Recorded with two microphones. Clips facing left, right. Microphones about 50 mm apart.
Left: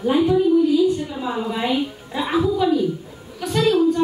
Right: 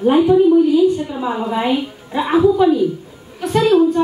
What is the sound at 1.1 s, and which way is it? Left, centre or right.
A woman's voice, centre.